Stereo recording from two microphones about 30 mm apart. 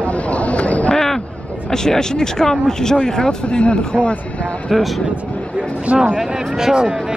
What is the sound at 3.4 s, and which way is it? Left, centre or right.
Speech, left.